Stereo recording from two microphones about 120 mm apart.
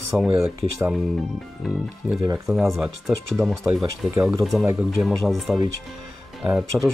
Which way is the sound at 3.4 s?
15° right (ahead or behind).